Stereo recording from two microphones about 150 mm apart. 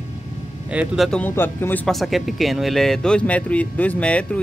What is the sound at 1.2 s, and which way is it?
Speech, 15° left (ahead or behind).